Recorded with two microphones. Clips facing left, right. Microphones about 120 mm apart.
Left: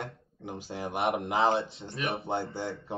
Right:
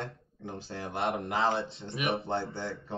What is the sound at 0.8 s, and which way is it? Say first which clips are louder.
Speech: left 3 dB; 25° left (ahead or behind).